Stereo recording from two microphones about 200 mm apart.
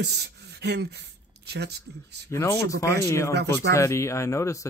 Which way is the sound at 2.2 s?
15° left (ahead or behind).